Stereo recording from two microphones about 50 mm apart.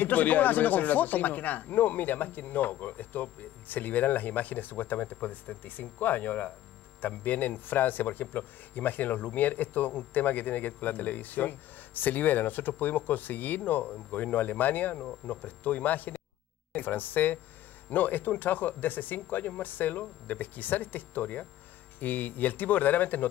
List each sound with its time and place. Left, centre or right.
0.0 s speech: left